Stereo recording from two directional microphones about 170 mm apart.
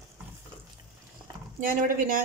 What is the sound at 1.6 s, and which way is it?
Speech, 55° right (ahead or behind).